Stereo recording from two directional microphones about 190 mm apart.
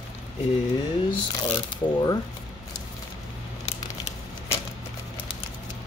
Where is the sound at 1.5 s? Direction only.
20° left (ahead or behind).